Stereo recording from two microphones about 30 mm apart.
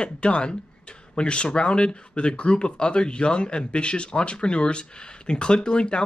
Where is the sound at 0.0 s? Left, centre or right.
Left.